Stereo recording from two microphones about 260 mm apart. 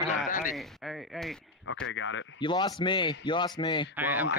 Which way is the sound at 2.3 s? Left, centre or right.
Centre.